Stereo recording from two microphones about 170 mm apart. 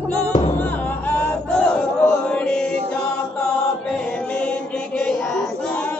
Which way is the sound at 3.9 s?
5° left (ahead or behind).